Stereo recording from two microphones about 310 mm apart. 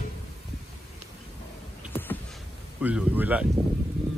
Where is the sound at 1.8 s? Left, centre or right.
Centre.